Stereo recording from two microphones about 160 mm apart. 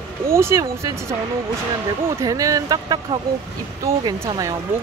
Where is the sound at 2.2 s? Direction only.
20° right (ahead or behind).